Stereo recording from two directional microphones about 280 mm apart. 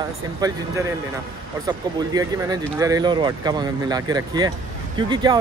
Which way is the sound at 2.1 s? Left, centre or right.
Centre.